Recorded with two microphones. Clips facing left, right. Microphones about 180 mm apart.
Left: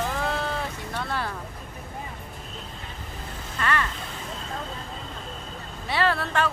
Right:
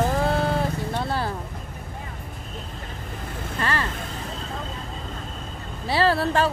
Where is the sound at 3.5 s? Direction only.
30° right (ahead or behind).